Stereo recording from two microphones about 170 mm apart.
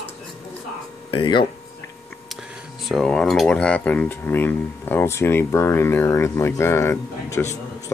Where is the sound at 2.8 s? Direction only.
5° left (ahead or behind).